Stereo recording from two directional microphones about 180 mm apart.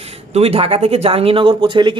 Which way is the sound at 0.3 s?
35° right (ahead or behind).